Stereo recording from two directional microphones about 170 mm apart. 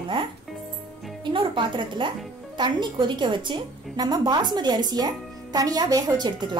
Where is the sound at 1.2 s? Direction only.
30° right (ahead or behind).